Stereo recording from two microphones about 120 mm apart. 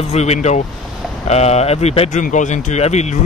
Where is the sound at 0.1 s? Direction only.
65° left (ahead or behind).